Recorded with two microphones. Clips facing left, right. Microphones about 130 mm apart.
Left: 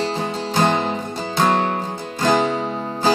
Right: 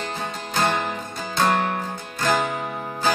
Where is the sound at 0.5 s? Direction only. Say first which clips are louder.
Left 4 dB; 25° left (ahead or behind).